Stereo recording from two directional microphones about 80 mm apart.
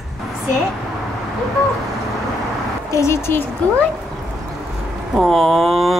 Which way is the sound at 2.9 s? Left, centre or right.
Left.